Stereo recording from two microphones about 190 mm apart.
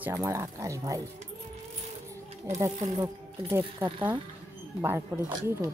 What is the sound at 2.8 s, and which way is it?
Speech, 20° right (ahead or behind).